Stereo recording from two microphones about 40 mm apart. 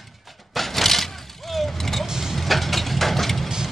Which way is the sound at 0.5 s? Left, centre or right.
Centre.